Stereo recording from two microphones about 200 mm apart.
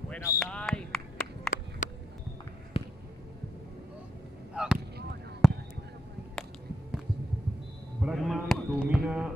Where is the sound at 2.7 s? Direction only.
30° left (ahead or behind).